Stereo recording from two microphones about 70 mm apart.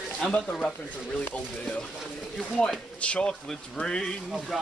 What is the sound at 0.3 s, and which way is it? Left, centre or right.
Speech, centre.